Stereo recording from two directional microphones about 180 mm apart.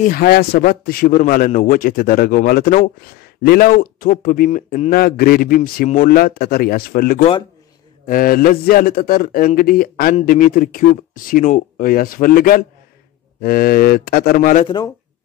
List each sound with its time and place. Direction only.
0.0 s a man's voice: 55° left (ahead or behind)